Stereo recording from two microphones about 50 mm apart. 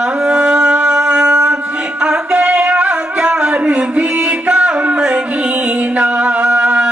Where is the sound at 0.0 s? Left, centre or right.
Centre.